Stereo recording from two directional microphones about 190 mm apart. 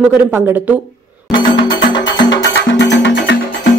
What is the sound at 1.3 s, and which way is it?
Music, 75° left (ahead or behind).